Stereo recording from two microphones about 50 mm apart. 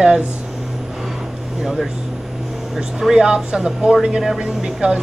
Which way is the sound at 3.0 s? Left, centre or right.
Centre.